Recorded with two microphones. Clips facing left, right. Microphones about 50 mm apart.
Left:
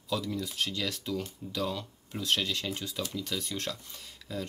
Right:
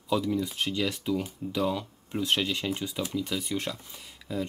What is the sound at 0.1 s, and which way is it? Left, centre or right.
Speech, centre.